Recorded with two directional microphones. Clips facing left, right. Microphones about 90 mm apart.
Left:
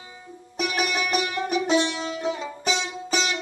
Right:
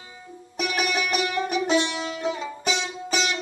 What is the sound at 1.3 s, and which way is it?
Music, 25° left (ahead or behind).